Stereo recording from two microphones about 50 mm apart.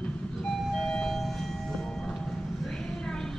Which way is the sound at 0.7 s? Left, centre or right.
Centre.